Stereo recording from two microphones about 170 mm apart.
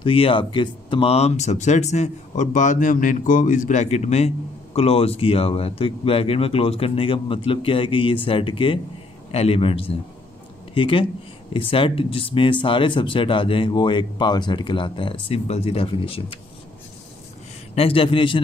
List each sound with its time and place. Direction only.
0.0 s speech: 30° left (ahead or behind)
17.7 s speech: 30° left (ahead or behind)